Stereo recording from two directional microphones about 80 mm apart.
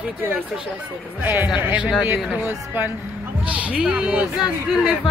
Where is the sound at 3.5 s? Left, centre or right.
Centre.